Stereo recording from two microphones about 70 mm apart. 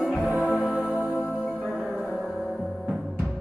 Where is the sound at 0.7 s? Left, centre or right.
Right.